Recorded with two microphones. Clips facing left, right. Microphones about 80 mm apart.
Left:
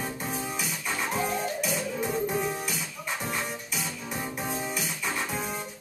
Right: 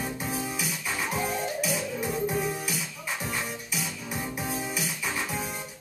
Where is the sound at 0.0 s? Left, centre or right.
Centre.